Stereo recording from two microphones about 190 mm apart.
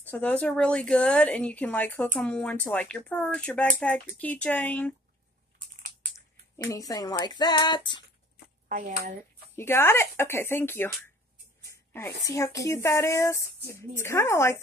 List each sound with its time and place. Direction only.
0.0 s speech: 10° left (ahead or behind)
5.8 s typing: 45° right (ahead or behind)
6.1 s speech: 15° left (ahead or behind)
8.6 s speech: 40° right (ahead or behind)
9.6 s speech: 10° left (ahead or behind)